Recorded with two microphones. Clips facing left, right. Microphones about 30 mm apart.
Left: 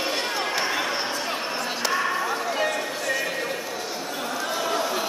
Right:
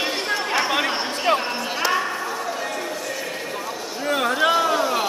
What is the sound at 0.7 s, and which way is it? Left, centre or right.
Chatter, right.